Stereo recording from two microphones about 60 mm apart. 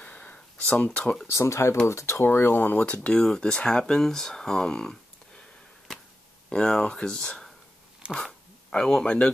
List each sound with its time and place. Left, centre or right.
0.0 s a sound: left
1.2 s speech: left
2.2 s speech: left
2.8 s speech: left
3.1 s speech: centre
5.9 s a sound: centre
6.5 s speech: centre